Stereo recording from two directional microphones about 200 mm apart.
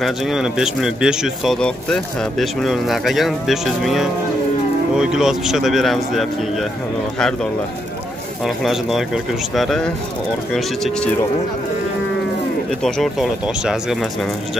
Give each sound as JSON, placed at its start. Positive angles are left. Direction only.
{"t": 0.0, "sound": "speech", "side_deg": 0}
{"t": 8.5, "sound": "speech", "side_deg": 0}
{"t": 12.8, "sound": "speech", "side_deg": 0}